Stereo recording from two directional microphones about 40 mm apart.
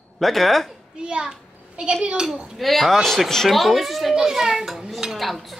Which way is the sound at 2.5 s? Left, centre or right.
Centre.